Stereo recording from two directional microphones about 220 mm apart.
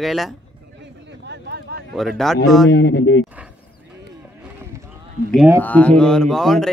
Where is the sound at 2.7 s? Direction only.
50° left (ahead or behind).